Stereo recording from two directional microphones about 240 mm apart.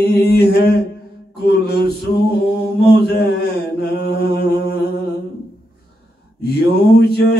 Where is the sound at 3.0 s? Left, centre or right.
Left.